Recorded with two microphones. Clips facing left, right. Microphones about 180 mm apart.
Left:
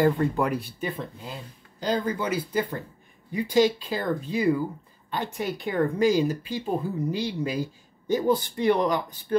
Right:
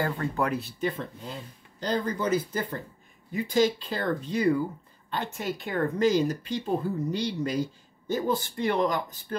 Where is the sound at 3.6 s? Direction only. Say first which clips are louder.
Left 2 dB; 10° left (ahead or behind).